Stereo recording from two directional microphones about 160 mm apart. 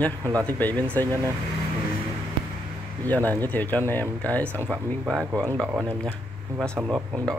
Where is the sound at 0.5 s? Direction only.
10° left (ahead or behind).